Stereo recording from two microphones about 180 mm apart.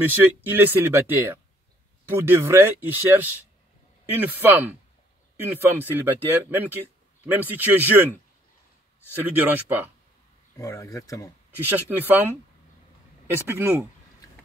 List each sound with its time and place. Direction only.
0.1 s speech: 10° right (ahead or behind)
9.2 s speech: 10° right (ahead or behind)
10.6 s speech: 15° left (ahead or behind)
11.5 s speech: 10° right (ahead or behind)